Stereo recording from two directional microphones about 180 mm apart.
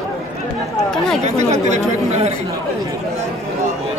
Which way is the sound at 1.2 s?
40° right (ahead or behind).